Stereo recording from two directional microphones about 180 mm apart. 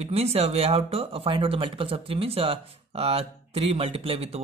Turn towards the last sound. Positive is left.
turn(degrees=-35)  # may be behind; listen again after turning